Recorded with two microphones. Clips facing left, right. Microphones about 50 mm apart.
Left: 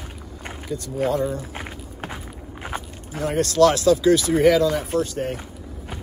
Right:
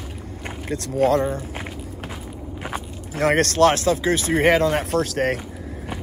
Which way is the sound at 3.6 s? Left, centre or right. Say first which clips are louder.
Left 4 dB; right.